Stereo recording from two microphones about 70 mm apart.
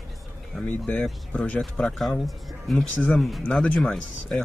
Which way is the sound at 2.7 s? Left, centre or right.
Centre.